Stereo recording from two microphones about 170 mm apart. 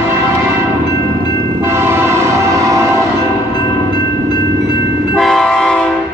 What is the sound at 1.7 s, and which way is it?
Train, 15° right (ahead or behind).